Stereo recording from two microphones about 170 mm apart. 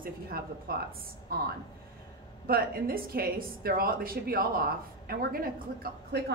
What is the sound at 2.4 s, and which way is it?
A woman's voice, 60° right (ahead or behind).